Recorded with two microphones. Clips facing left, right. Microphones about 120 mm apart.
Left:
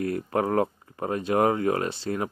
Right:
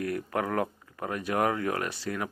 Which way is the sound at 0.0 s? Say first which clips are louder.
Left 4 dB; 30° left (ahead or behind).